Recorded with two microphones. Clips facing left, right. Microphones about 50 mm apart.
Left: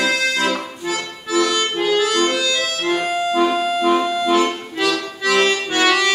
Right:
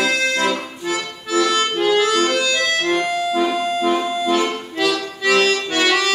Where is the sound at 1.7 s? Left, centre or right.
Centre.